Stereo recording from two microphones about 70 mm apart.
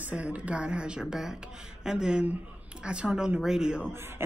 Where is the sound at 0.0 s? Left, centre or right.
Centre.